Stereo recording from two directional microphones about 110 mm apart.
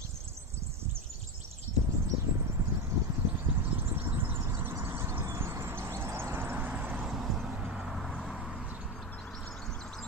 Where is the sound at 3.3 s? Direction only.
20° right (ahead or behind).